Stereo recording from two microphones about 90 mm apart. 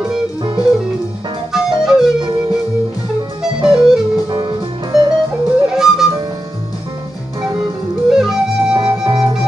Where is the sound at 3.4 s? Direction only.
5° right (ahead or behind).